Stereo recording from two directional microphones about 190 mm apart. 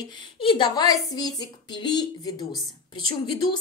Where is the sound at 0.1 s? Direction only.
25° left (ahead or behind).